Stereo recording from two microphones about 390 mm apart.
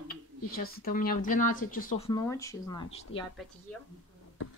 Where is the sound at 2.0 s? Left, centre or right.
Centre.